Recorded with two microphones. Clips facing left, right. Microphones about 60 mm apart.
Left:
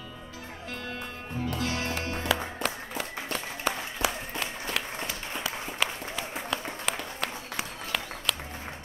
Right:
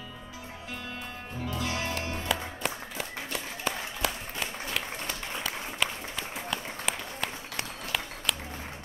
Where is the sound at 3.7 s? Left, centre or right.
Centre.